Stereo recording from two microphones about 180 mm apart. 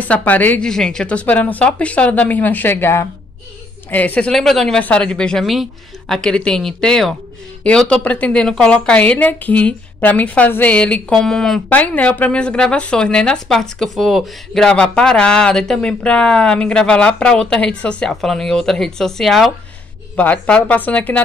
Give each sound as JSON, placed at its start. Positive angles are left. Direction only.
{"t": 0.0, "sound": "a woman's voice", "side_deg": 10}